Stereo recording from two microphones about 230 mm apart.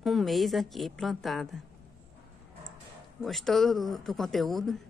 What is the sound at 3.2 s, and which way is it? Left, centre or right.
A woman's voice, centre.